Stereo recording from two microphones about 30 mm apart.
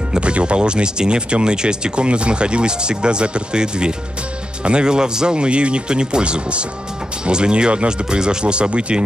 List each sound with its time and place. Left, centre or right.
0.2 s speech: right
7.7 s speech: right
8.1 s speech: right